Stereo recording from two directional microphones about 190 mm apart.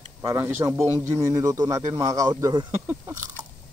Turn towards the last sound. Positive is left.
turn(degrees=-10)  # may be behind; listen again after turning